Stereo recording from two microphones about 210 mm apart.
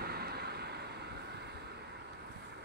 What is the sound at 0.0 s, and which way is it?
Vehicle, 50° right (ahead or behind).